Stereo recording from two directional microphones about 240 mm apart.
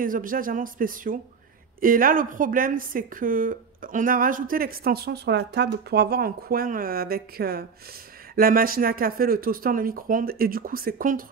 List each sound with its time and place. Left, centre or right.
0.0 s speech: right